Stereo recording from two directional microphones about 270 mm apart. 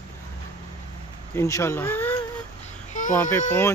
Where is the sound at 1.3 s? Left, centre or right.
Centre.